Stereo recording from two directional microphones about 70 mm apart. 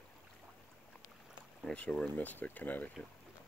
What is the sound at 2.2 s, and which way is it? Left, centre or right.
Speech, left.